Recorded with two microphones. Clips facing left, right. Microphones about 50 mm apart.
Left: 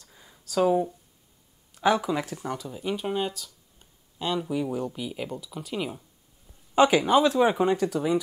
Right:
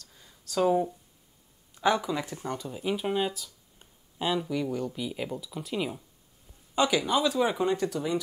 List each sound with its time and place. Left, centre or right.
0.0 s a sound: centre
1.8 s speech: centre
4.5 s speech: centre
6.8 s speech: left